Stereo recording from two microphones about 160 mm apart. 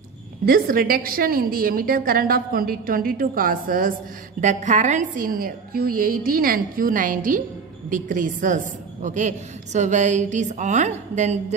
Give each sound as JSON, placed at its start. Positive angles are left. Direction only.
{"t": 0.5, "sound": "a woman's voice", "side_deg": -65}
{"t": 4.4, "sound": "a woman's voice", "side_deg": -50}